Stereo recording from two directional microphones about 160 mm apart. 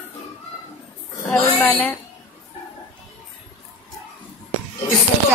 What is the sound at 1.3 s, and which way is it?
Speech, 10° left (ahead or behind).